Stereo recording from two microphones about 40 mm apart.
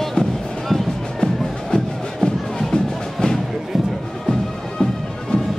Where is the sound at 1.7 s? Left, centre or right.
Centre.